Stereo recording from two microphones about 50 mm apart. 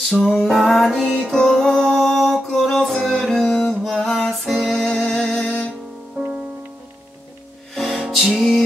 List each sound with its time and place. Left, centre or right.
0.0 s music: centre
6.2 s music: right
7.7 s music: centre